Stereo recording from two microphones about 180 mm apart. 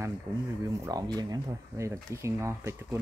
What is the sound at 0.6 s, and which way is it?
Speech, 20° right (ahead or behind).